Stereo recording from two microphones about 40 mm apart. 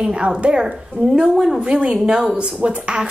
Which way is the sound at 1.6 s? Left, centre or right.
Right.